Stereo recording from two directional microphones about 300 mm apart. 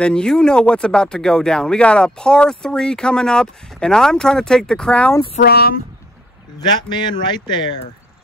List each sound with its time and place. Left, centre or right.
0.0 s speech: centre
5.4 s speech: left
6.6 s a man's voice: centre